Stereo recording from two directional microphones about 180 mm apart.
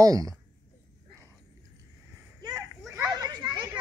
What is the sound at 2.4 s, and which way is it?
Children playing, 20° right (ahead or behind).